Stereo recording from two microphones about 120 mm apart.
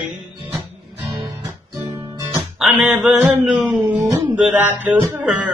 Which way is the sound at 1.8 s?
30° right (ahead or behind).